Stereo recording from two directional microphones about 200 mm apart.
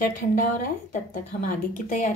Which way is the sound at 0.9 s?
45° left (ahead or behind).